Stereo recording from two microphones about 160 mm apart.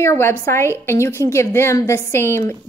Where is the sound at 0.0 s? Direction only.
15° left (ahead or behind).